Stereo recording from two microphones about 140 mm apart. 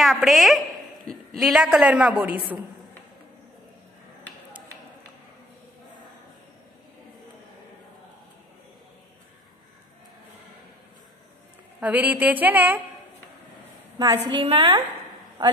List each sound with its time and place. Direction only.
0.0 s a woman's voice: centre (ahead or behind)
11.8 s a woman's voice: 10° right (ahead or behind)
13.9 s a woman's voice: 30° right (ahead or behind)